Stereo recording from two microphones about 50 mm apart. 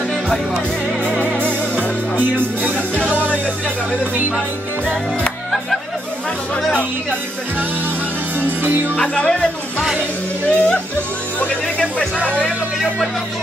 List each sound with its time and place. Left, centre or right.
6.5 s speech: left
8.4 s music: right
8.9 s speech: left
10.5 s speech: left